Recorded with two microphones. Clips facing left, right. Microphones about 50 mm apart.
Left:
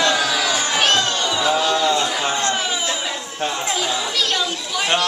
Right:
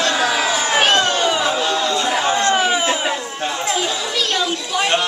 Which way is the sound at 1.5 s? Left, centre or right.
Centre.